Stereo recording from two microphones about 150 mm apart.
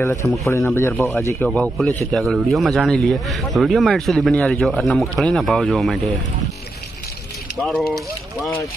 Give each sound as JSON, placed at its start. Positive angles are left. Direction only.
{"t": 0.0, "sound": "speech", "side_deg": 20}